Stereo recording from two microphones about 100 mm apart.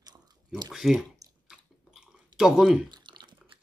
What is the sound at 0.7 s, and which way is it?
Speech, 5° right (ahead or behind).